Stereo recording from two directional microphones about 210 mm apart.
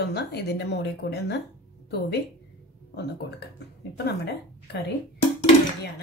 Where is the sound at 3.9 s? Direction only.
50° left (ahead or behind).